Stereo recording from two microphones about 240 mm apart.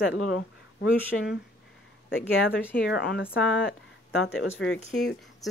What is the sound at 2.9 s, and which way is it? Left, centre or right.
Speech, left.